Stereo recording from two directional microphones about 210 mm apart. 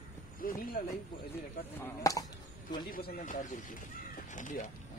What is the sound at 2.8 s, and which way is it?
Speech, 45° left (ahead or behind).